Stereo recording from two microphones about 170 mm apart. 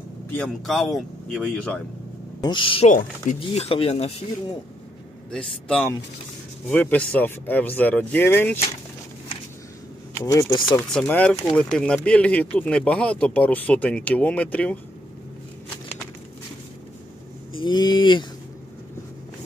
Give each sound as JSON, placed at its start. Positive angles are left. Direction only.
{"t": 0.4, "sound": "speech", "side_deg": 5}
{"t": 2.4, "sound": "speech", "side_deg": 30}
{"t": 2.9, "sound": "speech", "side_deg": 50}
{"t": 3.3, "sound": "speech", "side_deg": 35}
{"t": 5.3, "sound": "speech", "side_deg": 5}
{"t": 10.1, "sound": "speech", "side_deg": 20}
{"t": 10.9, "sound": "speech", "side_deg": 5}
{"t": 17.5, "sound": "a sound", "side_deg": 30}